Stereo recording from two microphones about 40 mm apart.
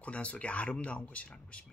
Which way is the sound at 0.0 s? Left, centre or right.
Left.